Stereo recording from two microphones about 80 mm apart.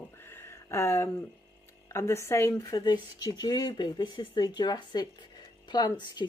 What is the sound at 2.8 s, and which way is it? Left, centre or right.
Speech, left.